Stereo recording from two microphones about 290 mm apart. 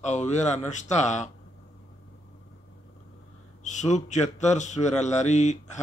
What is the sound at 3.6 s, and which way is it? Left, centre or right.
Speech, left.